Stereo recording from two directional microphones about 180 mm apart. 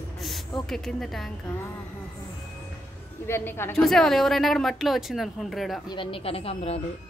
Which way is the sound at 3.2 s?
15° left (ahead or behind).